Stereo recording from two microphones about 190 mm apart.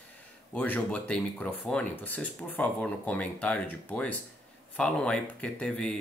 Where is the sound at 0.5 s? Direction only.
10° left (ahead or behind).